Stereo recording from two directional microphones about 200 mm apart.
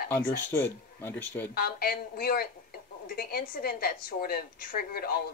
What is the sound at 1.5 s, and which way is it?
A woman's voice, 50° left (ahead or behind).